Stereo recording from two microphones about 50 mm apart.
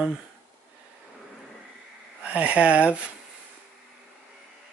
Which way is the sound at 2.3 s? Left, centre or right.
Right.